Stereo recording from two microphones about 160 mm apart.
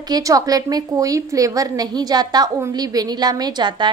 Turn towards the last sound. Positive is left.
turn(degrees=-25)  # may be behind; listen again after turning